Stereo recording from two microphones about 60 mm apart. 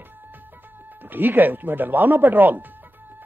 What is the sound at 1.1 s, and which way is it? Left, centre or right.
Speech, right.